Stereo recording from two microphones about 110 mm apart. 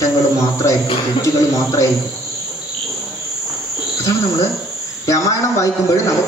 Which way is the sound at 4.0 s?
30° left (ahead or behind).